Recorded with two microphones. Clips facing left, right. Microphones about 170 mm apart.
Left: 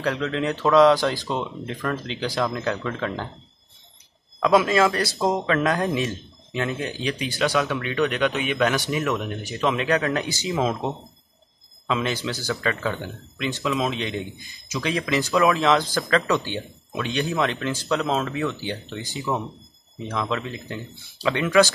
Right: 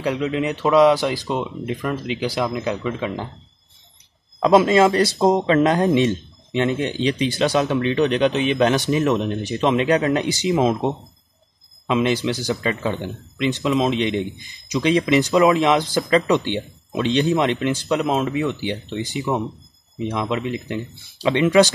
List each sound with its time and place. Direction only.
0.0 s speech: 15° right (ahead or behind)
4.4 s speech: 30° right (ahead or behind)